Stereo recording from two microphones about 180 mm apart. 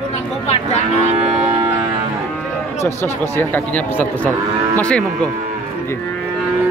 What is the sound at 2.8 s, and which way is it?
Speech, 10° left (ahead or behind).